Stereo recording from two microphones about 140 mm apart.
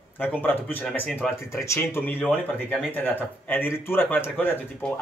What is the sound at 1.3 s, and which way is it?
Speech, 20° left (ahead or behind).